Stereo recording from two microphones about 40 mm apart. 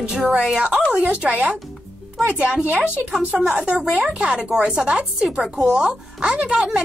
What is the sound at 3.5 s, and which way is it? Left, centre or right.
A woman's voice, right.